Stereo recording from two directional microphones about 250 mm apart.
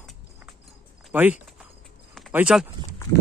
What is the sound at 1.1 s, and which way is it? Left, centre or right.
Speech, centre.